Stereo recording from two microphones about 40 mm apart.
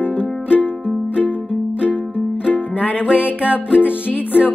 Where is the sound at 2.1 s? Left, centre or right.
Right.